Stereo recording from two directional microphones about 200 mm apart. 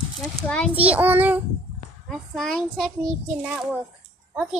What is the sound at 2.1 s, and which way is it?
Speech, centre (ahead or behind).